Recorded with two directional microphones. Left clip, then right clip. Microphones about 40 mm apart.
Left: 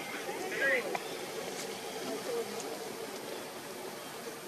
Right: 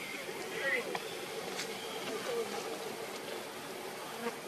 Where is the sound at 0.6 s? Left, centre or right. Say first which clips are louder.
Left 4 dB; centre.